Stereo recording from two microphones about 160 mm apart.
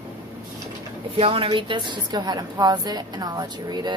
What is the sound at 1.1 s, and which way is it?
A woman's voice, 35° right (ahead or behind).